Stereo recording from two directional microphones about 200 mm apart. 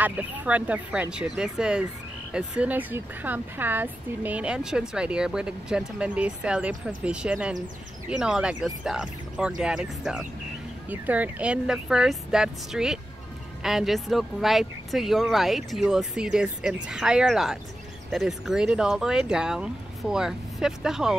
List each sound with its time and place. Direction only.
0.0 s speech: 10° right (ahead or behind)